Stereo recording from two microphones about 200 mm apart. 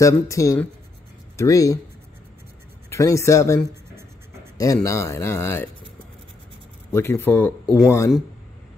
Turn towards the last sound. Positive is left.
turn(degrees=5)  # may be behind; listen again after turning